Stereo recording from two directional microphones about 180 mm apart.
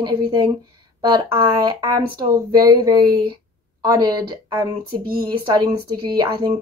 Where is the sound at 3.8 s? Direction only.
20° right (ahead or behind).